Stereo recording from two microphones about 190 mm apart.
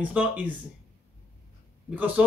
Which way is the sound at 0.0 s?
5° right (ahead or behind).